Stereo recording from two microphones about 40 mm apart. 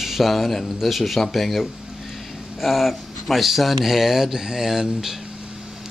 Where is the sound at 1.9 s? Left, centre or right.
Centre.